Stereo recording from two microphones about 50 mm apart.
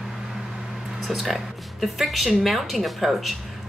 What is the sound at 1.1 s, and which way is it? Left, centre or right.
Speech, centre.